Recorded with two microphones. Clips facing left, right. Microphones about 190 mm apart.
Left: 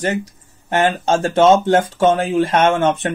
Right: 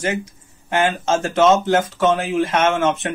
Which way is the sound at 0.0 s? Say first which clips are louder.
Left 2 dB; 35° left (ahead or behind).